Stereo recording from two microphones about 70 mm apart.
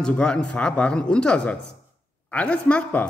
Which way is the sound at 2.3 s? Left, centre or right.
Centre.